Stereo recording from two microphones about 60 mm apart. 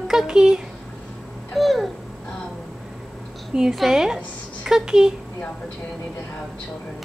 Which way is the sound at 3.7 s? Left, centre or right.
Centre.